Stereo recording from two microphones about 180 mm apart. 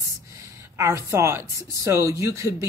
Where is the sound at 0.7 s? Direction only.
15° right (ahead or behind).